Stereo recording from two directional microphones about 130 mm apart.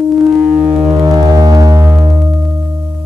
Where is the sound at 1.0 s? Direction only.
30° right (ahead or behind).